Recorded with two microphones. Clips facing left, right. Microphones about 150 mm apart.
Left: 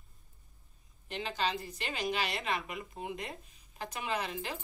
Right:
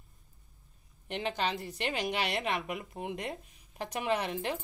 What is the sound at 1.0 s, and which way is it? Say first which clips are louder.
A woman's voice: right 2 dB; 65° right (ahead or behind).